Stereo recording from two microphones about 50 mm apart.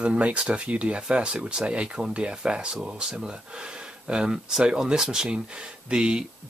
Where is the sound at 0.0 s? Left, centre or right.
Right.